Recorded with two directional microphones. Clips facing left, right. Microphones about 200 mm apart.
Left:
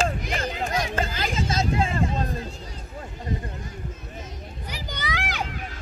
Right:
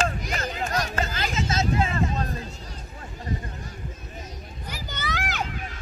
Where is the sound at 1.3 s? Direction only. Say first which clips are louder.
Even; 30° left (ahead or behind).